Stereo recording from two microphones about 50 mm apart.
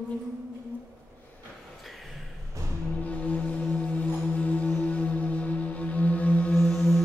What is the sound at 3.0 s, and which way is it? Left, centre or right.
Music, left.